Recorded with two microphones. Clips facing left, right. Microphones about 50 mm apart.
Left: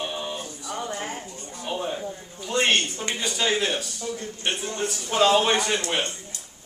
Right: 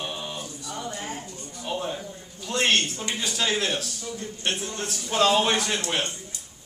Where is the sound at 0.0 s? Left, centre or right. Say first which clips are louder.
Left 3 dB; centre.